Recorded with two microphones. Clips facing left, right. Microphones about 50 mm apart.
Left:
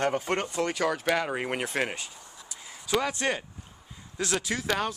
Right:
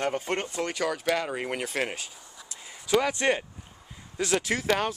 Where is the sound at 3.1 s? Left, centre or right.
Right.